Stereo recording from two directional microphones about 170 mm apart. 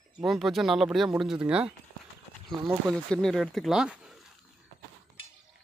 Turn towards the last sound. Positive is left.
turn(degrees=-5)  # may be behind; listen again after turning